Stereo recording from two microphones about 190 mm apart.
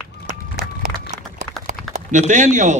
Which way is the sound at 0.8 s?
40° right (ahead or behind).